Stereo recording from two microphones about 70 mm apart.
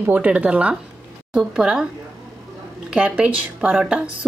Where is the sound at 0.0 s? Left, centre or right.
Right.